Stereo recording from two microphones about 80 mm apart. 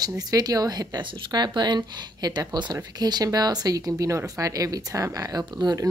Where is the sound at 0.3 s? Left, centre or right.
Right.